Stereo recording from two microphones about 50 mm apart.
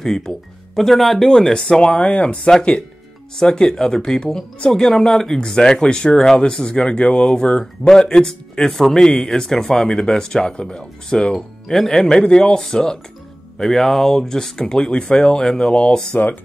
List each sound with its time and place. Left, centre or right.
0.0 s speech: centre
11.3 s speech: centre
11.9 s speech: centre